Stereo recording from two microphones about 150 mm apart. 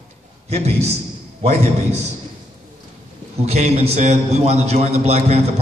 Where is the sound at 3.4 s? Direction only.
45° right (ahead or behind).